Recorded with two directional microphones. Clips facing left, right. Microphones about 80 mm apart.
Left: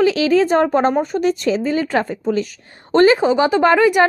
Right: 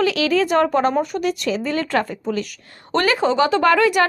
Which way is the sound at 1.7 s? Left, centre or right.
Centre.